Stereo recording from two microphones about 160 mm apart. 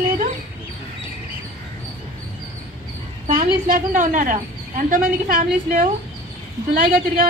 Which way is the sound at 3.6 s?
55° right (ahead or behind).